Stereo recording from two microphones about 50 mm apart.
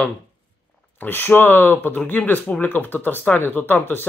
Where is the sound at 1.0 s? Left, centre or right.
Left.